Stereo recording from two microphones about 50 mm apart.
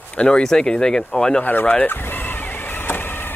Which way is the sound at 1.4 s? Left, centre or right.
Left.